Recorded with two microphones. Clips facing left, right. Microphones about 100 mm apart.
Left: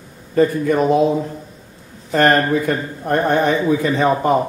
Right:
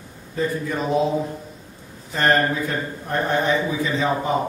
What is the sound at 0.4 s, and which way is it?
Speech, 60° left (ahead or behind).